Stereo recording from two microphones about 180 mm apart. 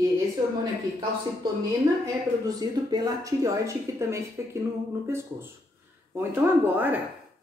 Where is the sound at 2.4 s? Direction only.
20° right (ahead or behind).